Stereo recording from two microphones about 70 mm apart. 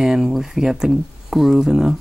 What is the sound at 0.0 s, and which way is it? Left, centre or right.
Speech, centre.